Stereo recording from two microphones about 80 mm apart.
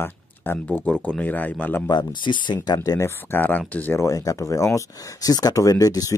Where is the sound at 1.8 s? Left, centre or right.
Left.